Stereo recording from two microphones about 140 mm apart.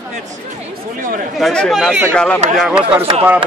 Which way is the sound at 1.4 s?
Centre (ahead or behind).